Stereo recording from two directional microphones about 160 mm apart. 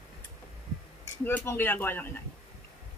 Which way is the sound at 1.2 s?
15° left (ahead or behind).